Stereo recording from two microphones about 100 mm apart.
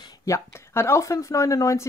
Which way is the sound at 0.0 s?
40° left (ahead or behind).